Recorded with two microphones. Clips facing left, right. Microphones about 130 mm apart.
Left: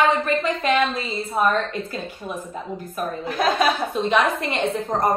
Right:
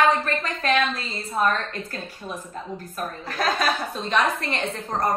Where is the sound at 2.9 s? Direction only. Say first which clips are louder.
Left 5 dB; 10° left (ahead or behind).